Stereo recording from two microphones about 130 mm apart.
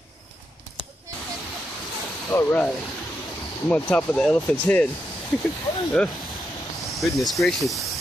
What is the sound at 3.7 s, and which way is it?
Speech, 10° left (ahead or behind).